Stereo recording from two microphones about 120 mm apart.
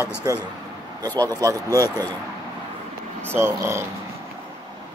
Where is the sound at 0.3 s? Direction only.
25° right (ahead or behind).